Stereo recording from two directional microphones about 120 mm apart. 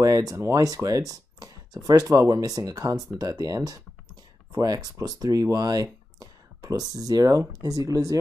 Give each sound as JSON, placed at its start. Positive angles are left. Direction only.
{"t": 0.0, "sound": "speech", "side_deg": -30}